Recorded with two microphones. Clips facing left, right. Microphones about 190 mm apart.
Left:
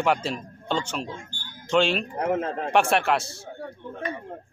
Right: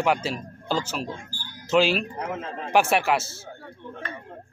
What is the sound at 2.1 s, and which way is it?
Speech, 55° left (ahead or behind).